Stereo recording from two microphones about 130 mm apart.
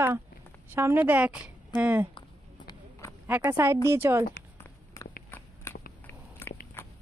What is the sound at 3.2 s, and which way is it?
A woman's voice, 15° right (ahead or behind).